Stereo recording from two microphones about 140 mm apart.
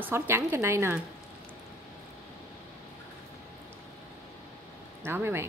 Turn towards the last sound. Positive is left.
turn(degrees=-15)  # may be behind; listen again after turning